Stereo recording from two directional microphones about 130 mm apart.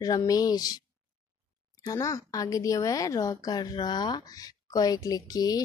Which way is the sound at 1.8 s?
25° left (ahead or behind).